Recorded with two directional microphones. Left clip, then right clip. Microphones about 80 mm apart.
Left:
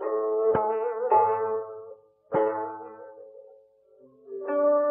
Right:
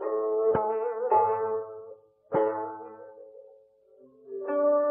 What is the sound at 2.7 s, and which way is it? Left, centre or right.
Music, left.